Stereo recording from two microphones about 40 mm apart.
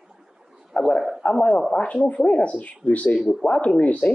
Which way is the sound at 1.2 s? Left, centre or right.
Left.